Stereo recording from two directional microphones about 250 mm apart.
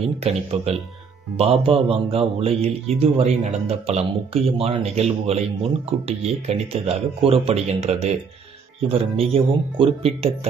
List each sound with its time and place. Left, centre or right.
0.2 s speech: right